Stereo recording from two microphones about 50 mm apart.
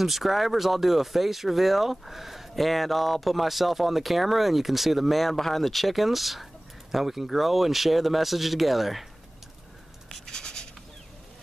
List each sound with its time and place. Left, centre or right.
0.0 s speech: centre
10.0 s scratch: centre